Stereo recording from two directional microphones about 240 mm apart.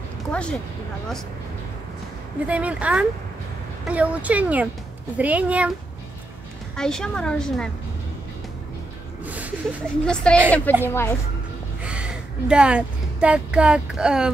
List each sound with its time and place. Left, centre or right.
0.3 s speech: centre
2.4 s a woman's voice: centre
6.8 s a woman's voice: centre
9.2 s a sound: centre
10.0 s a woman's voice: centre
11.8 s speech: centre